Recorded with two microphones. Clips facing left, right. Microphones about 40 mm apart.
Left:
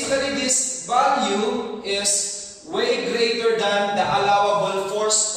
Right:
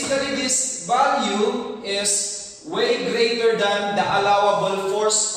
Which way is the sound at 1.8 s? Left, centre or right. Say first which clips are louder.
Even; centre.